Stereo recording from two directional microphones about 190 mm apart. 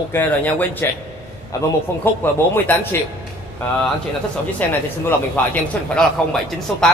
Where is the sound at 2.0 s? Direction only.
10° left (ahead or behind).